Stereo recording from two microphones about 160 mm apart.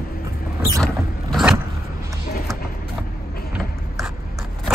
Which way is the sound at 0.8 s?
Centre (ahead or behind).